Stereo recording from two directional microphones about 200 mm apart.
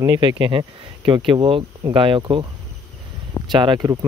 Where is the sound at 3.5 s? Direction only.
25° right (ahead or behind).